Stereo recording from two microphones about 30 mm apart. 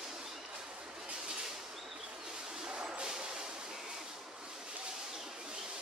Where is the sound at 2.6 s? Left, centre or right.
Right.